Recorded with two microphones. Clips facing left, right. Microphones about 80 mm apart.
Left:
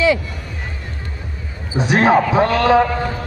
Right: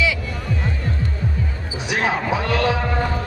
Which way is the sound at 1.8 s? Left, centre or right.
Left.